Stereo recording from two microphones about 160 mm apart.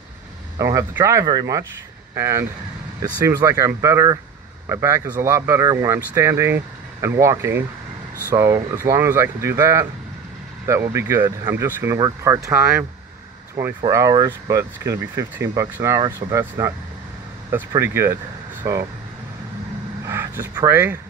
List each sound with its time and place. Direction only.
0.6 s speech: 20° right (ahead or behind)
20.1 s speech: 15° right (ahead or behind)